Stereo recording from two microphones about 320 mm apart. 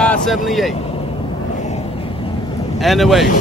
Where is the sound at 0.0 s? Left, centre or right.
Centre.